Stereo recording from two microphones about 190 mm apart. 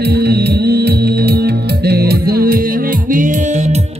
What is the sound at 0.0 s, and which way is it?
Music, 60° right (ahead or behind).